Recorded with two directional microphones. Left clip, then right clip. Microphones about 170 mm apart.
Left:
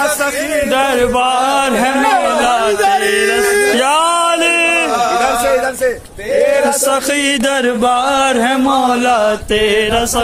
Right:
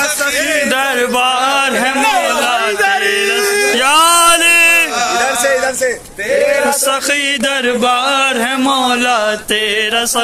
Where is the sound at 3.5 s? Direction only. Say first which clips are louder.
Left 1 dB; 40° left (ahead or behind).